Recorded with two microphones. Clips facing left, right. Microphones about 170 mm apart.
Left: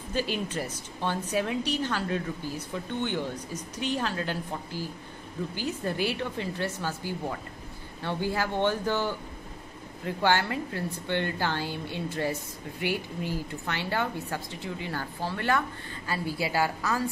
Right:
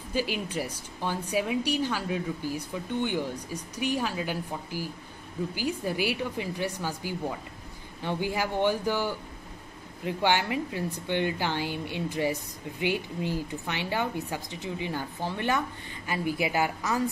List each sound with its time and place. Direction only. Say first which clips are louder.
0.1 s a woman's voice: even; 10° right (ahead or behind)